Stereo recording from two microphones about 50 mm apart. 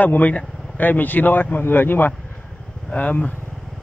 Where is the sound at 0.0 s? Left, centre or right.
Left.